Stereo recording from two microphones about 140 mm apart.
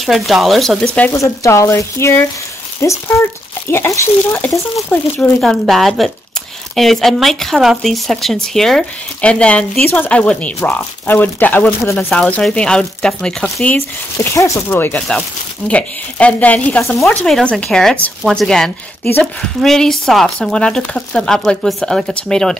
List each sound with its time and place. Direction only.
0.0 s speech: centre (ahead or behind)
1.1 s speech: 20° left (ahead or behind)
5.4 s speech: centre (ahead or behind); by 12.1 s 15° left (ahead or behind)
12.1 s speech: 5° left (ahead or behind)